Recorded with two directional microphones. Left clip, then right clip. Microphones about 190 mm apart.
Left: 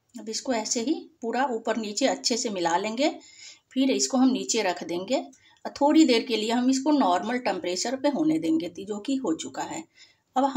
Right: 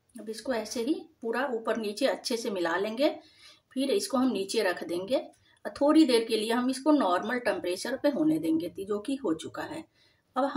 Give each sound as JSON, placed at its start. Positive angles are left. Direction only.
{"t": 0.3, "sound": "a woman's voice", "side_deg": 15}